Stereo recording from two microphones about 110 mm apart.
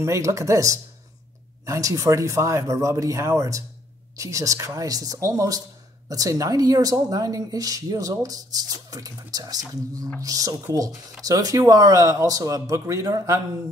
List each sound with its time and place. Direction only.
0.0 s speech: 30° right (ahead or behind)